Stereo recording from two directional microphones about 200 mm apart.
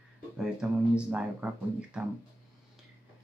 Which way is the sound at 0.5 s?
5° right (ahead or behind).